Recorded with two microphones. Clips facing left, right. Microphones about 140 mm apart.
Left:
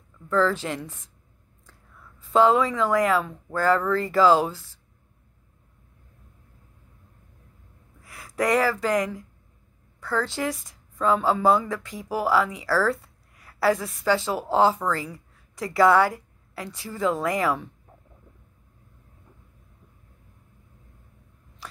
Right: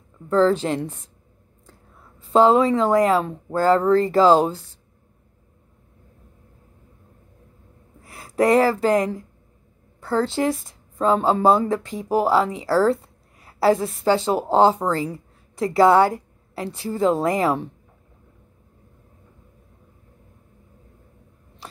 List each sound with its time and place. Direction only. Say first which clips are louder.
0.3 s a woman's voice: right 5 dB; 30° right (ahead or behind)
8.0 s a woman's voice: right 6 dB; 30° right (ahead or behind)